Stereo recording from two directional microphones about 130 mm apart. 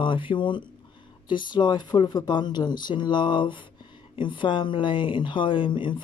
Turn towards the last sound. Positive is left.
turn(degrees=40)  # may be behind; listen again after turning